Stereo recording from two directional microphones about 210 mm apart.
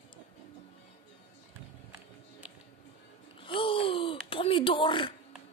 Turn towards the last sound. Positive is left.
turn(degrees=25)  # may be behind; listen again after turning